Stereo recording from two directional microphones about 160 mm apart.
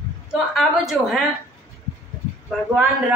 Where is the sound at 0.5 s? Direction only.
Centre (ahead or behind).